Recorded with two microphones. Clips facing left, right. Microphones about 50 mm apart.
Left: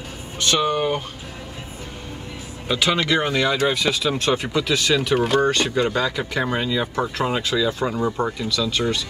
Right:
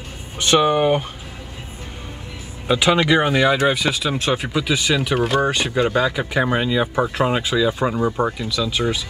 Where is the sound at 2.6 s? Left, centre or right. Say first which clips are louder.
Right 4 dB; centre.